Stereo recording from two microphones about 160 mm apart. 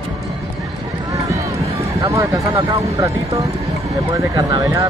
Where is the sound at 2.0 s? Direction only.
20° right (ahead or behind).